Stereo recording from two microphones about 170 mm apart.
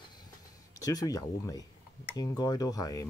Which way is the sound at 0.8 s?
20° left (ahead or behind).